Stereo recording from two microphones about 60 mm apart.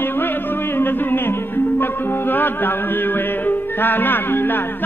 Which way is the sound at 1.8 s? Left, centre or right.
Left.